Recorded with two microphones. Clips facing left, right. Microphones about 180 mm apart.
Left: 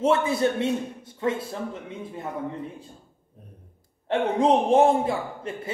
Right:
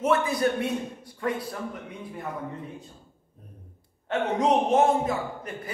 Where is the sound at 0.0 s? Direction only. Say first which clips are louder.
Left 2 dB; 25° left (ahead or behind).